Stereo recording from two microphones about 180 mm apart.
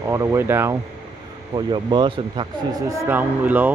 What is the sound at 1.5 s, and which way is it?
Speech, 25° right (ahead or behind).